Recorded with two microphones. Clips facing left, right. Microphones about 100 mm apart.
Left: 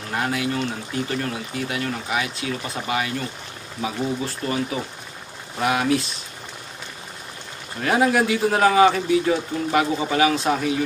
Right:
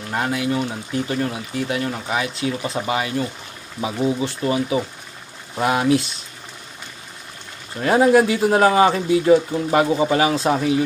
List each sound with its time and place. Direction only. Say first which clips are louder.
0.1 s speech: right 2 dB; 25° right (ahead or behind)
7.8 s speech: right 5 dB; 25° right (ahead or behind)